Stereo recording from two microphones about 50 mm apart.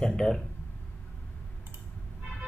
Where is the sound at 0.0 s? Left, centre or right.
Centre.